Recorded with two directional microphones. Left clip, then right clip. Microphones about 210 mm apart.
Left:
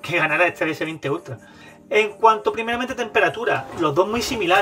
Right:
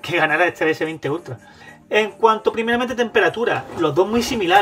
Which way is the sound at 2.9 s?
Centre (ahead or behind).